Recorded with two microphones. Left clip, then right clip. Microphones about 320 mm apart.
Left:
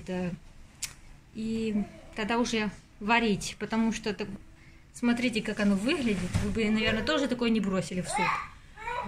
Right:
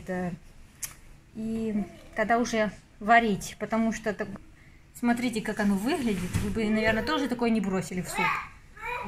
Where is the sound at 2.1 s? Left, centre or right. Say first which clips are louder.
Right 4 dB; centre.